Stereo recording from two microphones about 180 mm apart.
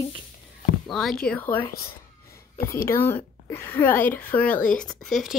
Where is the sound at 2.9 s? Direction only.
10° left (ahead or behind).